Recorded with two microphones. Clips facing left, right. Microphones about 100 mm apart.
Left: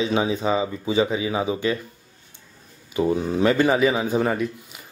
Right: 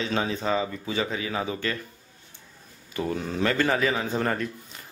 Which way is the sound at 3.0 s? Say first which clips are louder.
Left 7 dB; 15° left (ahead or behind).